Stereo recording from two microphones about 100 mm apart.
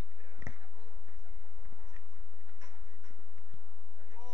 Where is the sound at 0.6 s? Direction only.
65° right (ahead or behind).